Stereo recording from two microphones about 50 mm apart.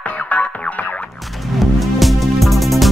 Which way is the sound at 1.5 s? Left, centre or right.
Centre.